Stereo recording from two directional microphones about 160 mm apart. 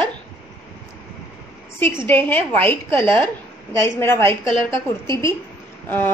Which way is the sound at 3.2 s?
15° left (ahead or behind).